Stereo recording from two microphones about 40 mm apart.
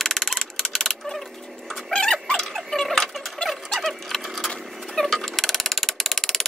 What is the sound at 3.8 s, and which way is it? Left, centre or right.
Horse, centre.